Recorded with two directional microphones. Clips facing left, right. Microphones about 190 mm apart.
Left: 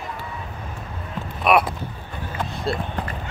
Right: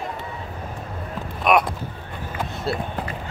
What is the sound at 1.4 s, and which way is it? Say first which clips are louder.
Crow: even; 5° left (ahead or behind).